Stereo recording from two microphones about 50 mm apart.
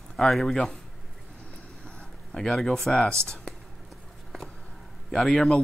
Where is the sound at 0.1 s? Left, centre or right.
Centre.